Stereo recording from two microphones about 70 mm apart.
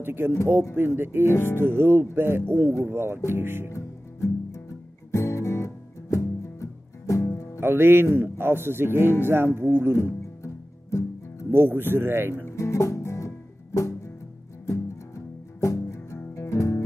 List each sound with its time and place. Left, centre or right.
0.0 s speech: right
1.3 s music: left
1.6 s speech: right
3.7 s music: left
7.6 s speech: right
9.9 s music: left
11.5 s speech: right
12.4 s music: left